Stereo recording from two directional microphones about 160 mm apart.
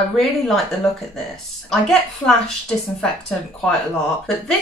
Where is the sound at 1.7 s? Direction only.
5° left (ahead or behind).